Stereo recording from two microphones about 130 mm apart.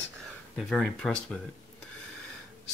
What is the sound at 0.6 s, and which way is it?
Speech, centre (ahead or behind).